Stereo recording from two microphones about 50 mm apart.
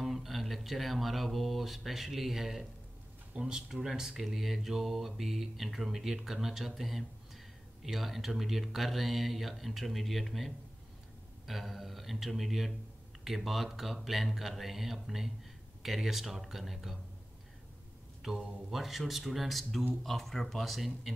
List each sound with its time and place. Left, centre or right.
0.0 s speech: centre
3.3 s speech: centre
3.6 s mantra: centre
18.2 s mantra: centre